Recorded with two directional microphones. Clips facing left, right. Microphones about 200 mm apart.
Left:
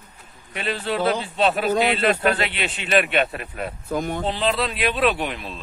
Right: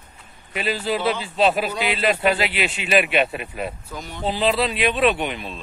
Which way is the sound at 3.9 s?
50° left (ahead or behind).